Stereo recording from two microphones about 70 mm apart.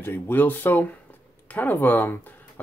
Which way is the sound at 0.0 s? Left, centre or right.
Left.